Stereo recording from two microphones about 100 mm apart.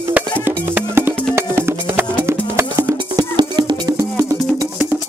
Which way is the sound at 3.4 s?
45° right (ahead or behind).